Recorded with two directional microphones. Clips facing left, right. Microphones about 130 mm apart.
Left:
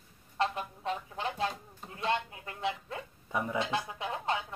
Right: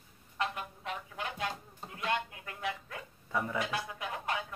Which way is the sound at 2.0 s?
30° left (ahead or behind).